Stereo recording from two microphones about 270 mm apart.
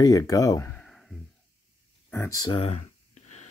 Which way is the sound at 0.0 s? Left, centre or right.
Centre.